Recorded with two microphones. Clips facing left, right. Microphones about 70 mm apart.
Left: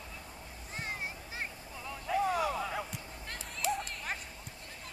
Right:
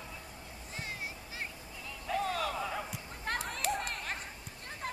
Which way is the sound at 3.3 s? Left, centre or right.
Right.